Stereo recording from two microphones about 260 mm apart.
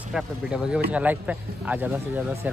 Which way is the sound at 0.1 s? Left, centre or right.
Centre.